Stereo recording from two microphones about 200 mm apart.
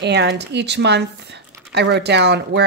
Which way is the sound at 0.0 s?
60° right (ahead or behind).